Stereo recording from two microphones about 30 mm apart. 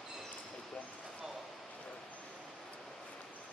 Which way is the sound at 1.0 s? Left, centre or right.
Centre.